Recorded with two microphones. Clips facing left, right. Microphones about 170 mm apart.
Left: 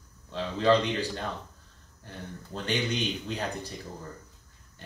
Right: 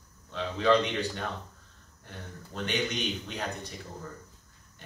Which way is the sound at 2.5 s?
30° left (ahead or behind).